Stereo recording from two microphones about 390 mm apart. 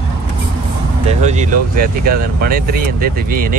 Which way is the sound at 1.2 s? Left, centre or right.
Centre.